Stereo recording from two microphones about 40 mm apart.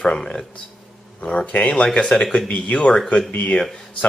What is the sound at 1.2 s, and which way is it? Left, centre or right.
Speech, left.